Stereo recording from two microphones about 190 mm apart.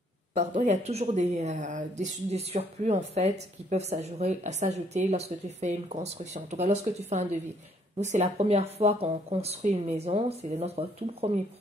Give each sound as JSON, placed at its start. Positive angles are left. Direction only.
{"t": 0.3, "sound": "speech", "side_deg": -35}